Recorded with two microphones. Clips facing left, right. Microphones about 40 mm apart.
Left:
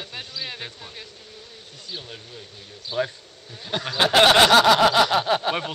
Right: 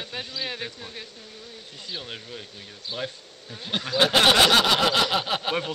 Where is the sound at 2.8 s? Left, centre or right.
Centre.